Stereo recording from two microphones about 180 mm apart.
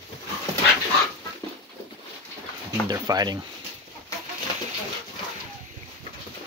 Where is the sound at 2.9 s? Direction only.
20° right (ahead or behind).